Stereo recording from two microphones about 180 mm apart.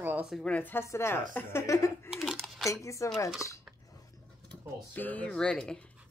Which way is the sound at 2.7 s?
15° left (ahead or behind).